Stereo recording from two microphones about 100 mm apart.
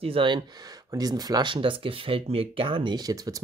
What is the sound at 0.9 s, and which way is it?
Speech, 40° right (ahead or behind).